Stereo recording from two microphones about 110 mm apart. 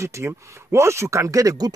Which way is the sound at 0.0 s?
25° right (ahead or behind).